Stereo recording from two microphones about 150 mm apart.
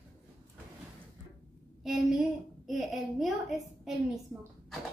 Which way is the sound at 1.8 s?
5° right (ahead or behind).